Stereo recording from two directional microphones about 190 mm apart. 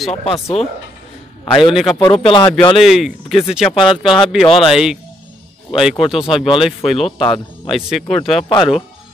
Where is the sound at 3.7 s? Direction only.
25° left (ahead or behind).